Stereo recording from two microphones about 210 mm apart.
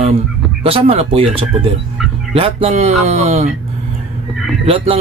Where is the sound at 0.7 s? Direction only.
25° right (ahead or behind).